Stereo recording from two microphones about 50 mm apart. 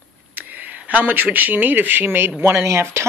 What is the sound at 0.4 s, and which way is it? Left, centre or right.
Speech, right.